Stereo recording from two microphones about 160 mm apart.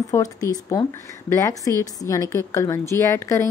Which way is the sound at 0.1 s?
20° left (ahead or behind).